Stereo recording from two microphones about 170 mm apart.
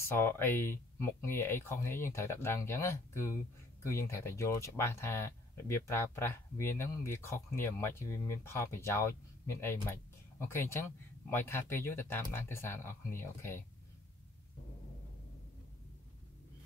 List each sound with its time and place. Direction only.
0.1 s speech: 15° left (ahead or behind)